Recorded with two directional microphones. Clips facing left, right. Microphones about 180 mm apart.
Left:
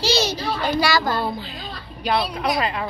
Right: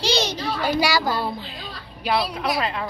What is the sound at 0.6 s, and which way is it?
A child's voice, 10° right (ahead or behind).